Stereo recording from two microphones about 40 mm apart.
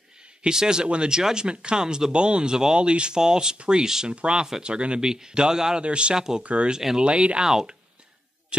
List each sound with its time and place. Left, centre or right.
0.4 s speech: centre
5.8 s speech: right
6.1 s speech: centre
6.4 s speech: right
6.7 s speech: centre
7.0 s speech: right
7.4 s speech: centre